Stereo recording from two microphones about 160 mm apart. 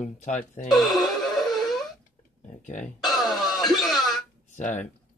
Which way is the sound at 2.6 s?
50° left (ahead or behind).